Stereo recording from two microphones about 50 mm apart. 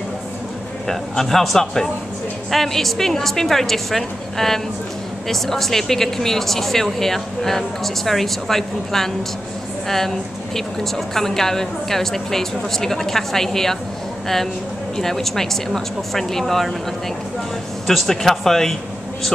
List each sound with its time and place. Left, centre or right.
0.8 s a woman's voice: centre
17.8 s a woman's voice: centre